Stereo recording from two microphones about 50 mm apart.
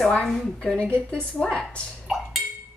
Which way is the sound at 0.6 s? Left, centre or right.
Left.